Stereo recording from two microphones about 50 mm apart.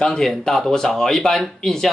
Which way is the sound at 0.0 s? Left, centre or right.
Centre.